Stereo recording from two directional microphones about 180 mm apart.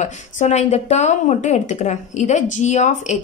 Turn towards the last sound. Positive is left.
turn(degrees=40)  # may be behind; listen again after turning